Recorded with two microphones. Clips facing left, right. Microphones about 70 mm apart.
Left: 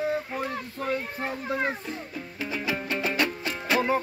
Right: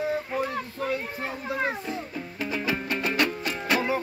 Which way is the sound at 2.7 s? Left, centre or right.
Centre.